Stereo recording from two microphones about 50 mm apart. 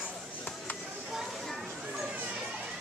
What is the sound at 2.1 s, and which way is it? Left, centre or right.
Children playing, right.